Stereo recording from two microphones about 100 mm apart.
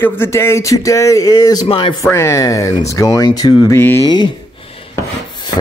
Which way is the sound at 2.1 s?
30° left (ahead or behind).